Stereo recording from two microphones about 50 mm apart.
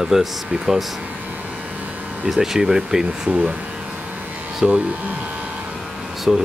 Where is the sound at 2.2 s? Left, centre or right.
Centre.